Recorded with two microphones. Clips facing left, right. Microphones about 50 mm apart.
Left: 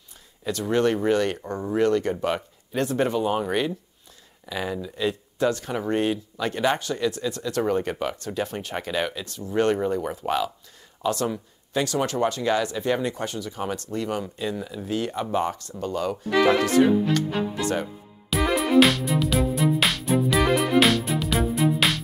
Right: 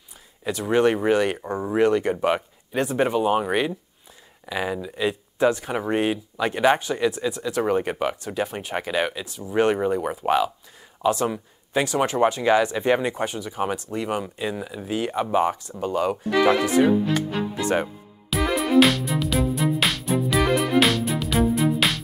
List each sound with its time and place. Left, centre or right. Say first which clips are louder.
0.4 s speech: right 2 dB; centre
16.8 s speech: even; centre
17.6 s speech: right 6 dB; right
18.3 s music: even; centre